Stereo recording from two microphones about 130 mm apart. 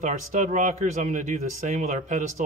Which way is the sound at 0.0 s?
75° right (ahead or behind).